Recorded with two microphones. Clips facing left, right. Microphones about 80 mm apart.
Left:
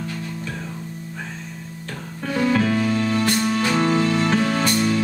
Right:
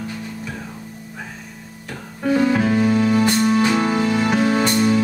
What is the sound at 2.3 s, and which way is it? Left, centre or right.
Music, centre.